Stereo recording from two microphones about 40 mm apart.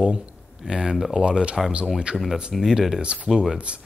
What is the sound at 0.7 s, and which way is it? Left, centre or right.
Speech, centre.